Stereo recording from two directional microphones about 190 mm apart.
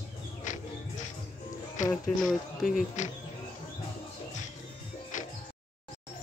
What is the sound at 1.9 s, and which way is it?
Speech, centre (ahead or behind).